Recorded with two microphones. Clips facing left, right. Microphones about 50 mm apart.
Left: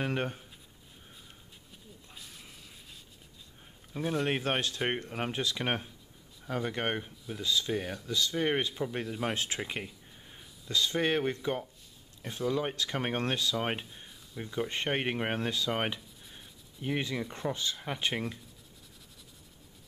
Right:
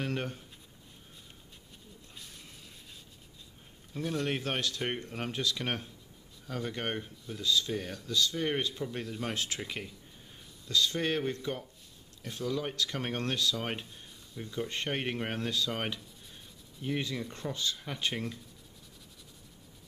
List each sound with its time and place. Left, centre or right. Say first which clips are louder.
0.0 s speech: left 2 dB; left
3.9 s speech: left 2 dB; centre